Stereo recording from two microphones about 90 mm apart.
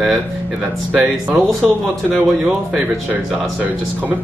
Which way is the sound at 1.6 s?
Centre (ahead or behind).